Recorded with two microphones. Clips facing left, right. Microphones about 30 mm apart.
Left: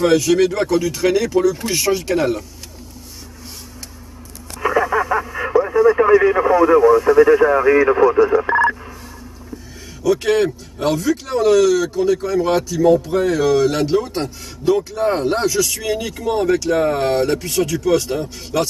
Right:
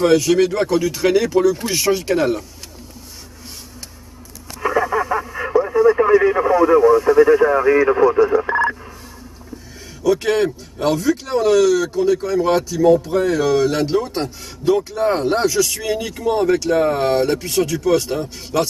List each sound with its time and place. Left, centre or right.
0.0 s speech: centre
4.6 s radio: centre
6.2 s speech: centre
6.5 s speech: centre
10.0 s speech: centre